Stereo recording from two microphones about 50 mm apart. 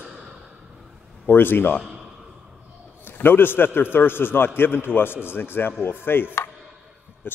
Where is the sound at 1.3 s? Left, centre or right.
Left.